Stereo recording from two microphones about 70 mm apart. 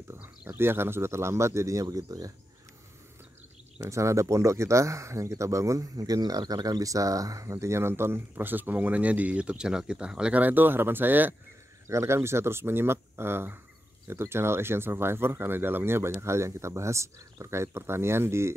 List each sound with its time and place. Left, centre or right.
0.5 s speech: right
3.8 s speech: right; by 10.4 s centre
10.4 s speech: right
11.9 s speech: right